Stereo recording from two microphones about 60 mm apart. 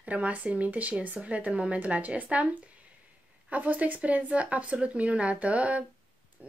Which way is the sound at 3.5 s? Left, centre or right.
Right.